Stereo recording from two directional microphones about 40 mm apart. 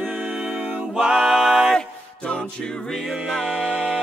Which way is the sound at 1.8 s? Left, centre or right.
Left.